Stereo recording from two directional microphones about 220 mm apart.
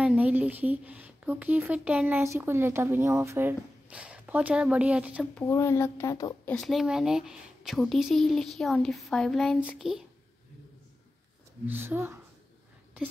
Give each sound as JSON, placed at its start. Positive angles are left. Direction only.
{"t": 0.0, "sound": "a woman's voice", "side_deg": -5}
{"t": 5.3, "sound": "speech", "side_deg": 10}
{"t": 6.5, "sound": "speech", "side_deg": 0}
{"t": 11.6, "sound": "a woman's voice", "side_deg": -10}